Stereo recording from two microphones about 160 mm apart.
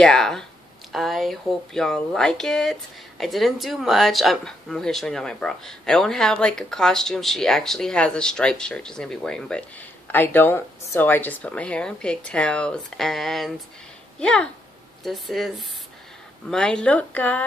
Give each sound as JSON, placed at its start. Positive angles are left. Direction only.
{"t": 0.0, "sound": "speech", "side_deg": 5}